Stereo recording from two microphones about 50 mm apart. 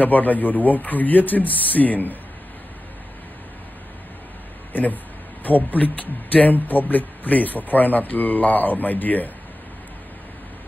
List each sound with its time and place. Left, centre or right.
0.0 s speech: left
5.7 s speech: left